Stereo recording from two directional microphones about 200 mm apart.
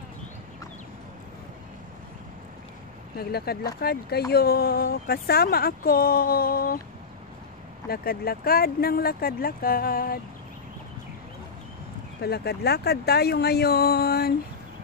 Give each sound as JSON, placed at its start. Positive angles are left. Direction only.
{"t": 3.2, "sound": "speech", "side_deg": 50}
{"t": 7.9, "sound": "speech", "side_deg": 50}
{"t": 12.2, "sound": "speech", "side_deg": 55}